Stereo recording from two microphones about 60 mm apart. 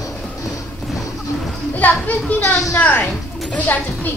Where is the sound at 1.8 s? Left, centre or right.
Left.